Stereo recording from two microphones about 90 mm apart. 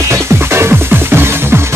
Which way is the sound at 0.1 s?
30° right (ahead or behind).